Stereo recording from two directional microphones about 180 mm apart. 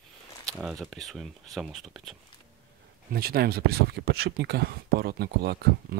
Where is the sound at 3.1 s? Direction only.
55° right (ahead or behind).